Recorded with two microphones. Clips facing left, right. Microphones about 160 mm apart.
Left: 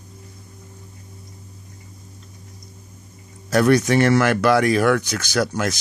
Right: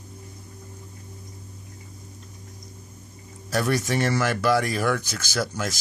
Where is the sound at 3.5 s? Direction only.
75° left (ahead or behind).